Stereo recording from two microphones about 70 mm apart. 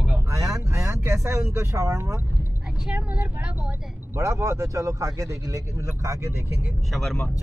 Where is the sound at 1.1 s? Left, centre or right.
Right.